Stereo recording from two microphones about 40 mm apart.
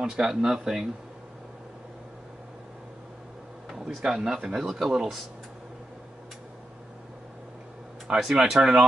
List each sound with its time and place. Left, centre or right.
0.0 s speech: centre
4.0 s speech: centre
4.6 s speech: centre
8.1 s speech: centre